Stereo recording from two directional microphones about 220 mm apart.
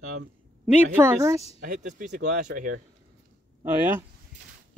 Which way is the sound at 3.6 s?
10° right (ahead or behind).